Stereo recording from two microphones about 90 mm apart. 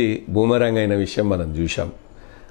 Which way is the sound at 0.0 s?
15° left (ahead or behind).